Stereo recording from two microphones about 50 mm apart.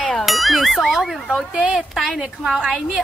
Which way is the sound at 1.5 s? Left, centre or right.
Right.